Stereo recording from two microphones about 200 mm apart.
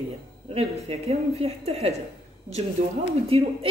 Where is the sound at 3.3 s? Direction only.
30° right (ahead or behind).